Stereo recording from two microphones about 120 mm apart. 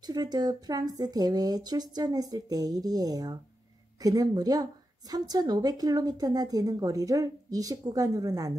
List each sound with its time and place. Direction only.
0.0 s a woman's voice: 35° right (ahead or behind)